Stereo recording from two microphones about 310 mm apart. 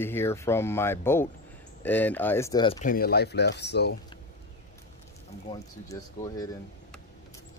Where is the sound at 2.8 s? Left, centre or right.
Left.